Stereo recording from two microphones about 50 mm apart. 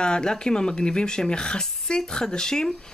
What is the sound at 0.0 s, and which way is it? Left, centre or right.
Speech, centre.